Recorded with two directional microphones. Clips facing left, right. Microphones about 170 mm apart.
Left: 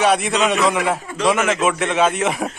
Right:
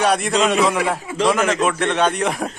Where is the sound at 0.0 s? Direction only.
Centre (ahead or behind).